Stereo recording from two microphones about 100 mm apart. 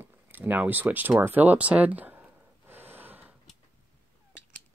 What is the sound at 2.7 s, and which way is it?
Gasp, 20° right (ahead or behind).